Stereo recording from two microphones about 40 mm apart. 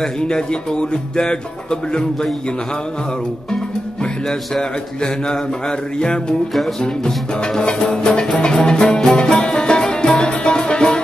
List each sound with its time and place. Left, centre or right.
0.0 s speech: left
4.0 s speech: centre
7.5 s speech: left
9.1 s music: left